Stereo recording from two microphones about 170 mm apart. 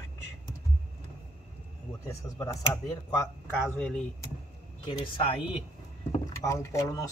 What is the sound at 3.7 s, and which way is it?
Speech, 5° left (ahead or behind).